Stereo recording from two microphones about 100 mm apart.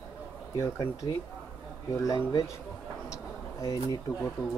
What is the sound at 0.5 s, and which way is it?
Speech, 30° left (ahead or behind).